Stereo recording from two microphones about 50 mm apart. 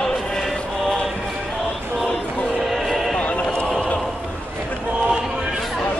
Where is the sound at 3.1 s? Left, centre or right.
Left.